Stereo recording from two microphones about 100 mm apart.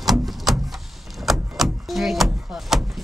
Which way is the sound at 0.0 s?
Centre (ahead or behind).